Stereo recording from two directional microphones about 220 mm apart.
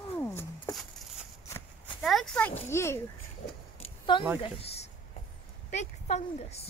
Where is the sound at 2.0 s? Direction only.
Centre (ahead or behind).